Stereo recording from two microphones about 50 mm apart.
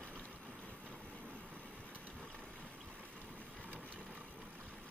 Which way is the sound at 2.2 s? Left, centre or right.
Centre.